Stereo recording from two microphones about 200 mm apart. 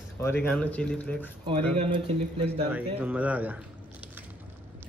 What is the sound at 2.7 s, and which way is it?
Speech, 10° right (ahead or behind).